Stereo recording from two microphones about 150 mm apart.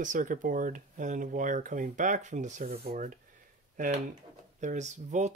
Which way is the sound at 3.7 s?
60° right (ahead or behind).